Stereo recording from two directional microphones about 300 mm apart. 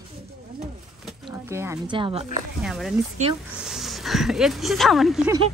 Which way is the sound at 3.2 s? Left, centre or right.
Right.